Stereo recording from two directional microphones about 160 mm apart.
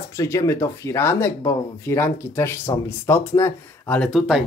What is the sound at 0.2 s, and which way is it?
Speech, 20° left (ahead or behind).